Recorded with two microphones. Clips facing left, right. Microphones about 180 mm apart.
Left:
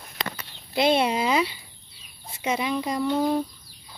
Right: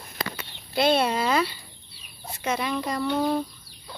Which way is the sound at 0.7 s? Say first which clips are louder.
Left 1 dB; 15° left (ahead or behind).